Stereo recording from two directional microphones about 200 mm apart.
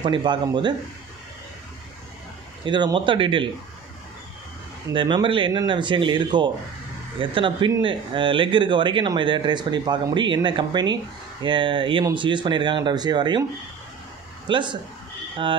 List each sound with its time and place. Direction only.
0.0 s speech: 25° right (ahead or behind)
2.6 s speech: 20° right (ahead or behind)
4.9 s speech: 25° right (ahead or behind)
14.5 s speech: 25° right (ahead or behind)